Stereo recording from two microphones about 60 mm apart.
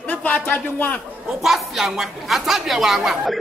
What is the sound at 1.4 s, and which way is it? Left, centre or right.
A woman's voice, centre.